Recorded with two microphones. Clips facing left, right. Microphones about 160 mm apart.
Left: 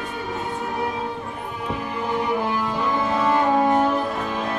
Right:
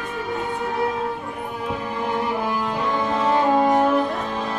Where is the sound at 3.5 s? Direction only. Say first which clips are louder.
Right 2 dB; centre (ahead or behind).